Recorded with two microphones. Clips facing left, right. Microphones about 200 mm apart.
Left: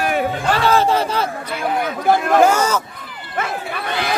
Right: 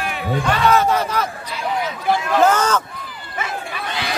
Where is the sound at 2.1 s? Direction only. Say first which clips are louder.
Left 3 dB; 50° left (ahead or behind).